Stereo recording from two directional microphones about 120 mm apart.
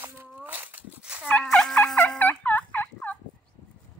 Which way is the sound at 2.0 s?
15° left (ahead or behind).